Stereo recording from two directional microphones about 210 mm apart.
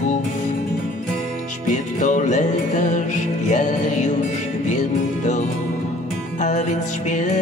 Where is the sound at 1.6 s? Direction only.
35° left (ahead or behind).